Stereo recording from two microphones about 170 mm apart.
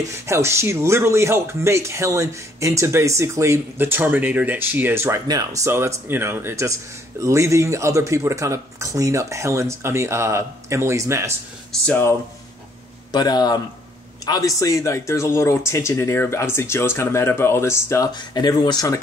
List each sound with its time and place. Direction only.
0.1 s speech: 15° right (ahead or behind)
11.8 s speech: 5° left (ahead or behind)
13.1 s speech: 25° left (ahead or behind)